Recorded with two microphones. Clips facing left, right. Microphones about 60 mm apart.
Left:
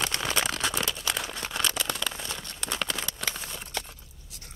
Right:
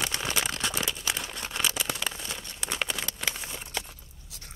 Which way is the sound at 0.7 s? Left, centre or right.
Centre.